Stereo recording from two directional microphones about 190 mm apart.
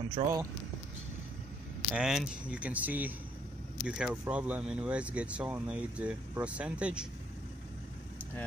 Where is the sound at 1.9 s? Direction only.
5° right (ahead or behind).